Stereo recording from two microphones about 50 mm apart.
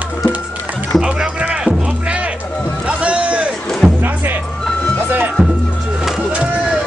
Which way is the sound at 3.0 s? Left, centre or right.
Right.